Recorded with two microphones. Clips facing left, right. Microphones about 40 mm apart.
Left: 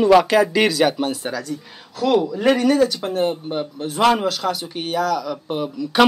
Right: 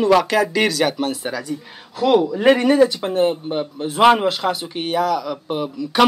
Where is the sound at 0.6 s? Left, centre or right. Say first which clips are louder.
Left 1 dB; centre.